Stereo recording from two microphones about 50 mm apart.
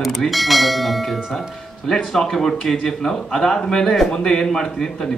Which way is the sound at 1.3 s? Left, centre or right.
Centre.